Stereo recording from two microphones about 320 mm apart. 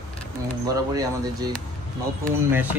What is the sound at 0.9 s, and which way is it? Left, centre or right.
Speech, centre.